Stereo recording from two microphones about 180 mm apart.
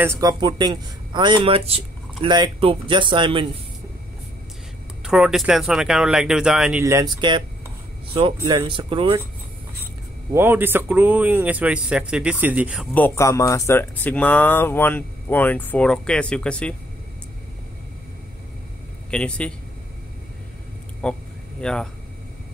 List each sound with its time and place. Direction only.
0.0 s a man's voice: 15° right (ahead or behind)
5.0 s speech: 5° right (ahead or behind)
6.8 s a man's voice: 15° right (ahead or behind)
10.3 s speech: 10° right (ahead or behind)
12.9 s speech: 10° left (ahead or behind)
19.0 s a man's voice: 5° left (ahead or behind)
21.0 s a sound: 5° left (ahead or behind)